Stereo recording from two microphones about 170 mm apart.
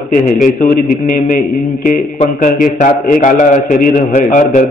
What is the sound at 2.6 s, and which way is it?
A man's voice, 50° left (ahead or behind).